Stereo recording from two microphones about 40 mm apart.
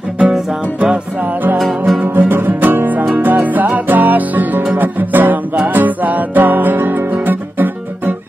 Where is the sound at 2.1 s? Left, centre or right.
Right.